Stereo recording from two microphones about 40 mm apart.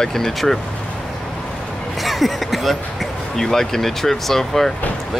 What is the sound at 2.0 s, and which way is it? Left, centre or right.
Speech, centre.